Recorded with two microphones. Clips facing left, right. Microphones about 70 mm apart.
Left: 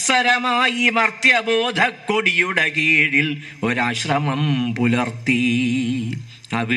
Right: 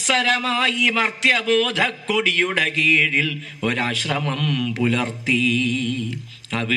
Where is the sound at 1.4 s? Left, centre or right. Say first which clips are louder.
Left 1 dB; left.